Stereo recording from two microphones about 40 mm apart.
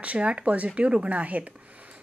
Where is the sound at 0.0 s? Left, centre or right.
Right.